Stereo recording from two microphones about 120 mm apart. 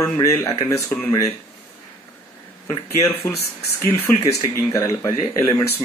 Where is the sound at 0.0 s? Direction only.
25° left (ahead or behind).